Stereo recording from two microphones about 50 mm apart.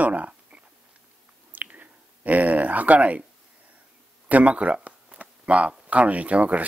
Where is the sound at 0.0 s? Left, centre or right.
Right.